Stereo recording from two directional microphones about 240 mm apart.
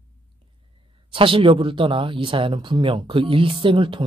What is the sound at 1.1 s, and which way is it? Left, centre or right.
Speech, right.